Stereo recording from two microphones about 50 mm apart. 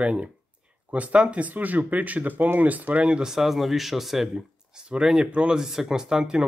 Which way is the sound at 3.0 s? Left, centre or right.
Centre.